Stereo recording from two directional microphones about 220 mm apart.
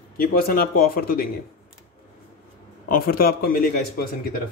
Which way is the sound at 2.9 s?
40° left (ahead or behind).